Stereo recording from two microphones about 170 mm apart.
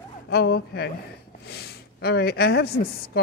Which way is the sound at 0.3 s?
70° left (ahead or behind).